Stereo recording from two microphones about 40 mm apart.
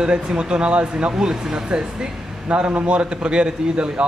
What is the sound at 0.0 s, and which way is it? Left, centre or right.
Speech, centre.